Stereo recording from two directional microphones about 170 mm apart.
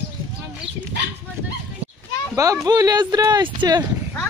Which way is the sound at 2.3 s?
20° right (ahead or behind).